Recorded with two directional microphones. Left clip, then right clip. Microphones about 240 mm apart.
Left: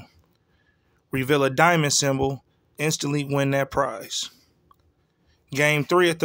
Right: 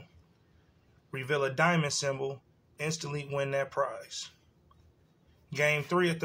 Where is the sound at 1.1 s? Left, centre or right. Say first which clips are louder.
Left 9 dB; left.